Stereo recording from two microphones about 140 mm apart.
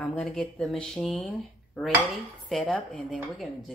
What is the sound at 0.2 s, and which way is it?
Speech, 5° left (ahead or behind).